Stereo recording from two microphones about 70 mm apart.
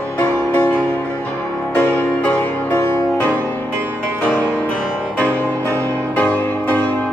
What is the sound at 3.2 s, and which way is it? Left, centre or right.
Music, left.